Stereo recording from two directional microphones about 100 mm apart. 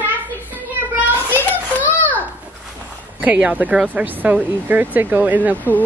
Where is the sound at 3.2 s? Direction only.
15° right (ahead or behind).